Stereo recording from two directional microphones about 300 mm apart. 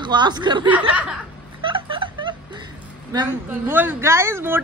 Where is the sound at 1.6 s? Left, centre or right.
Centre.